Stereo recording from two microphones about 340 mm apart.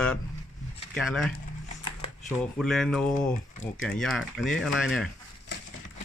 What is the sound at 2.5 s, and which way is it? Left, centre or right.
Speech, centre.